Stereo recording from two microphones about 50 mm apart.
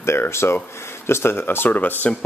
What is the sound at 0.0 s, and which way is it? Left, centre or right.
Speech, left.